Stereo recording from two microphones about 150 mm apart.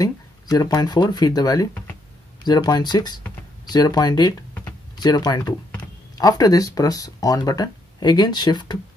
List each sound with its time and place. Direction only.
0.0 s speech: 25° left (ahead or behind)